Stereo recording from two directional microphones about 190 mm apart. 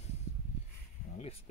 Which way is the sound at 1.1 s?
35° left (ahead or behind).